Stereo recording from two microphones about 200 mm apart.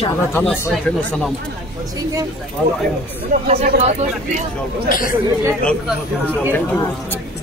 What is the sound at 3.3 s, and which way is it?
Speech, 35° right (ahead or behind).